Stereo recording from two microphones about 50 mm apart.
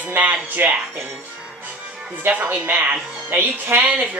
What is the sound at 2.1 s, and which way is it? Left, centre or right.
A child's voice, right.